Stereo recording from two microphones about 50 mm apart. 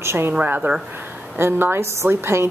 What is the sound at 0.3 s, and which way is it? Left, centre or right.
Speech, right.